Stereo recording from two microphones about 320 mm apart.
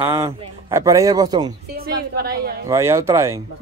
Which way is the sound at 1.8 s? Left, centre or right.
Right.